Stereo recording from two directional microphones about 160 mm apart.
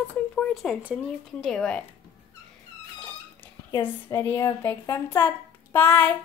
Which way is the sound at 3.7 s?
15° left (ahead or behind).